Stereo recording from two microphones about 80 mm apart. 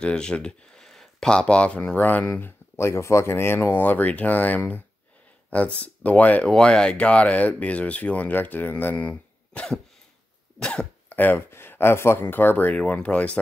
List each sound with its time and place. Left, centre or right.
0.0 s speech: centre
2.8 s speech: left
9.1 s cough: centre
10.6 s speech: centre
11.1 s speech: left